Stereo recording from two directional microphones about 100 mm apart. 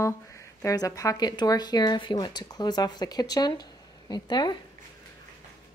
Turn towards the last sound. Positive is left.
turn(degrees=45)  # may be behind; listen again after turning